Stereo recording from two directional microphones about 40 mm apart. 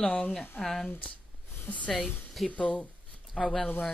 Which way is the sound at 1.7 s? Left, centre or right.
Left.